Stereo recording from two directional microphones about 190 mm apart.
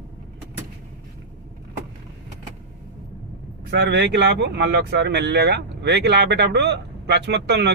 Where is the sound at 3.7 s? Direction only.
65° right (ahead or behind).